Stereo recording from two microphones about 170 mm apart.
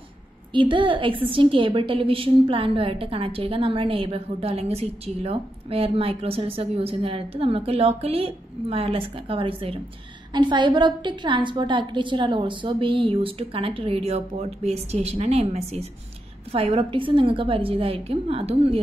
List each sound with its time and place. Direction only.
0.5 s a woman's voice: 30° right (ahead or behind)